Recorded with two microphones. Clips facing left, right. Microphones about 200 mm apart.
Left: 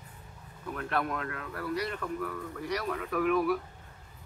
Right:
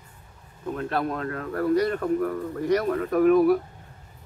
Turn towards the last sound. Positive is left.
turn(degrees=-40)  # may be behind; listen again after turning